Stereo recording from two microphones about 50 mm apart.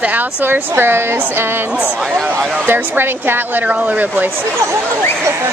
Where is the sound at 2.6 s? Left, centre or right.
Right.